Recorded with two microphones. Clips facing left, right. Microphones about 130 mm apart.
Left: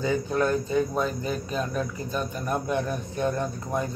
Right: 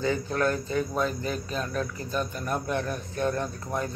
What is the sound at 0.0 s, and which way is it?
Speech, 15° left (ahead or behind).